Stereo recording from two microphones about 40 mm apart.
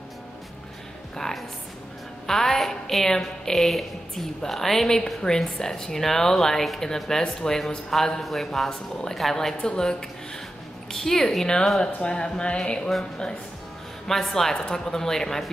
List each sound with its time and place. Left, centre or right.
1.1 s a sound: centre
2.2 s a woman's voice: centre
9.6 s a woman's voice: left
11.8 s speech: left
14.0 s a woman's voice: centre